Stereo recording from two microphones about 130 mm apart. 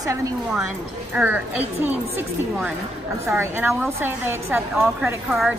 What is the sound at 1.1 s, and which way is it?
Speech, 15° right (ahead or behind).